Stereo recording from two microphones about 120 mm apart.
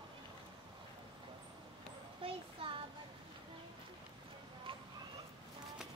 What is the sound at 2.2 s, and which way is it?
Child singing, 45° right (ahead or behind).